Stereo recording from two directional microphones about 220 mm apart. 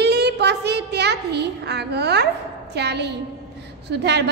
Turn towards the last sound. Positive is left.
turn(degrees=-50)  # may be behind; listen again after turning